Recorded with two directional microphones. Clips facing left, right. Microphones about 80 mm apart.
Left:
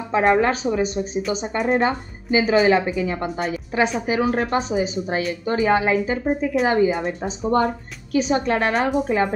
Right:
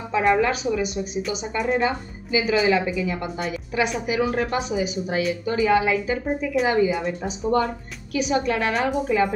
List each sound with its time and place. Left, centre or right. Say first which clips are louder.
0.1 s speech: left 2 dB; left